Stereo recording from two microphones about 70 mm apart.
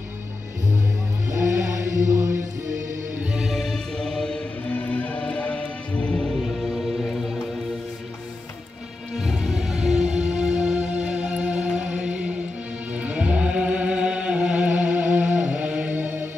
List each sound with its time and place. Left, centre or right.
1.3 s music: right
3.5 s music: centre
4.6 s music: left
6.4 s music: centre
9.1 s music: centre; by 16.3 s right